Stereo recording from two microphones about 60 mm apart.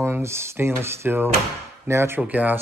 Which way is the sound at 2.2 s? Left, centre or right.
Right.